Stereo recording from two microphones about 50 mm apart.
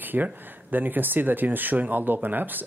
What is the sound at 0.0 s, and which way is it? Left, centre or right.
Speech, right.